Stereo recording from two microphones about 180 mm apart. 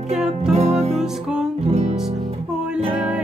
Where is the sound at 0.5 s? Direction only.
35° right (ahead or behind).